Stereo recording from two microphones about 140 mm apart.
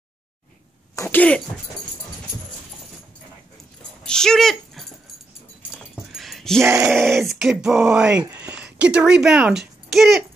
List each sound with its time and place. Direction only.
0.9 s cough: 20° left (ahead or behind)
4.0 s speech: 5° left (ahead or behind)
6.1 s a sound: centre (ahead or behind)
6.6 s groan: 20° right (ahead or behind)
6.9 s a child's voice: centre (ahead or behind)